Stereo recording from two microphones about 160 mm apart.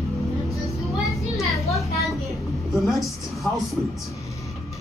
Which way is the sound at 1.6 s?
Centre (ahead or behind).